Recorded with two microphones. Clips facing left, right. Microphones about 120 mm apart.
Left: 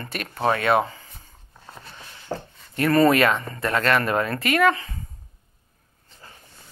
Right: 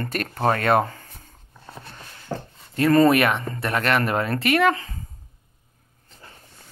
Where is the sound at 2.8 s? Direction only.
25° right (ahead or behind).